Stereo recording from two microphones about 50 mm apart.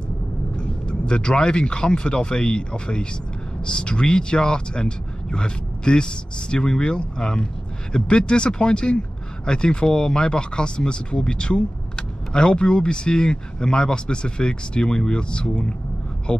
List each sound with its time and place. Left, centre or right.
0.6 s speech: centre